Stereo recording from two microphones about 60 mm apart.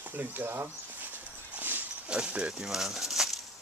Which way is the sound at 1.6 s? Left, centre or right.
Right.